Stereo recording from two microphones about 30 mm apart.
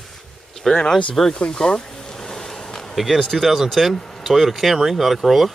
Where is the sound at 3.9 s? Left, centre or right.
Centre.